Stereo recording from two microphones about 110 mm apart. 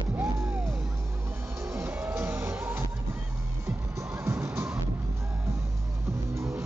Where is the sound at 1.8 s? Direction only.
25° right (ahead or behind).